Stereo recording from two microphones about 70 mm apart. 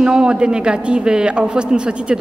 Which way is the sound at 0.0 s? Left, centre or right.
Centre.